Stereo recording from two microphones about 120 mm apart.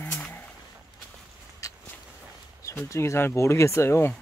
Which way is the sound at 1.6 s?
30° left (ahead or behind).